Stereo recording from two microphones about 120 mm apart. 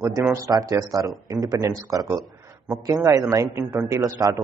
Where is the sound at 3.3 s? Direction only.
25° right (ahead or behind).